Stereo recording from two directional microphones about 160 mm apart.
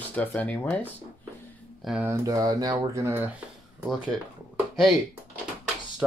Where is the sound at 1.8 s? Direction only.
Centre (ahead or behind).